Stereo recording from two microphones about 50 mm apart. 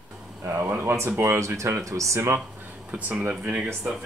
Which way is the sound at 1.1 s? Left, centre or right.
Right.